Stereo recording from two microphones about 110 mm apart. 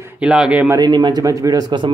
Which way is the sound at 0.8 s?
40° right (ahead or behind).